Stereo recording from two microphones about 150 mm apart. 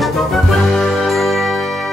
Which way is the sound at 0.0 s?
Centre (ahead or behind).